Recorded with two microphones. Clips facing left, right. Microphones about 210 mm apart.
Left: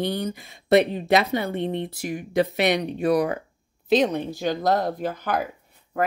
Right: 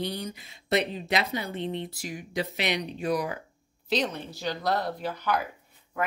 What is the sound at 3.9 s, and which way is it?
Speech, 45° left (ahead or behind).